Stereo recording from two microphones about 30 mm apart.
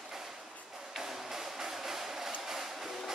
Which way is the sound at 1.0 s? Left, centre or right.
Centre.